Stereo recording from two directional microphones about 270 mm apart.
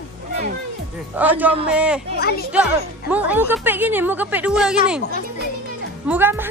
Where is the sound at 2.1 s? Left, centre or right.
Left.